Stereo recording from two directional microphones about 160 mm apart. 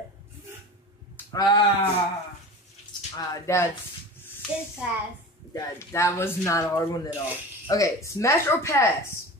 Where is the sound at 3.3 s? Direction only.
20° left (ahead or behind).